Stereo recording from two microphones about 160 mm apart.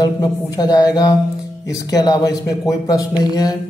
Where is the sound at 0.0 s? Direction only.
25° left (ahead or behind).